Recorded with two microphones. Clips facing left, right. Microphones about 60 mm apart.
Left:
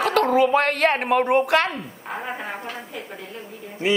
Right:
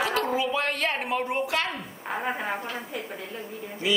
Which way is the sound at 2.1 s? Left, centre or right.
Centre.